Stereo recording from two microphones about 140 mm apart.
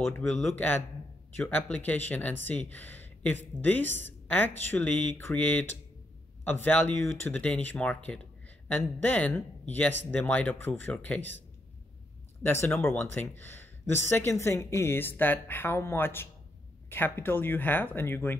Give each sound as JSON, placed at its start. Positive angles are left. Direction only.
{"t": 0.2, "sound": "speech", "side_deg": 0}
{"t": 1.3, "sound": "speech", "side_deg": 15}
{"t": 12.4, "sound": "speech", "side_deg": 15}